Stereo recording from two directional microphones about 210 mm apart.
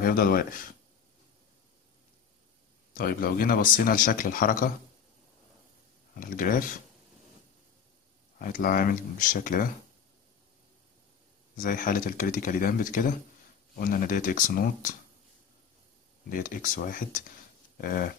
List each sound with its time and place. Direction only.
0.0 s speech: 45° left (ahead or behind)
2.9 s a man's voice: 40° left (ahead or behind)
6.1 s a man's voice: 40° left (ahead or behind)
8.4 s a man's voice: 40° left (ahead or behind)
11.5 s a man's voice: 40° left (ahead or behind)
16.3 s a man's voice: 40° left (ahead or behind)